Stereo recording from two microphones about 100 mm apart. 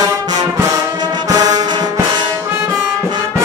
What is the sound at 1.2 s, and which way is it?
Music, 40° right (ahead or behind).